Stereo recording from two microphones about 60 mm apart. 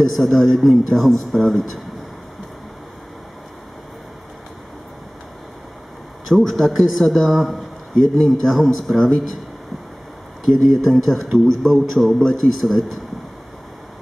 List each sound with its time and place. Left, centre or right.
0.1 s a man's voice: centre
6.2 s a man's voice: centre
10.4 s a man's voice: centre